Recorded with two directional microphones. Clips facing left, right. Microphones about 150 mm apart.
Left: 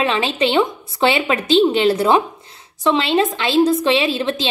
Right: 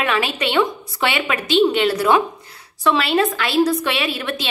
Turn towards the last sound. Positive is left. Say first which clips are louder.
# left 5 dB
turn(degrees=25)  # may be behind; listen again after turning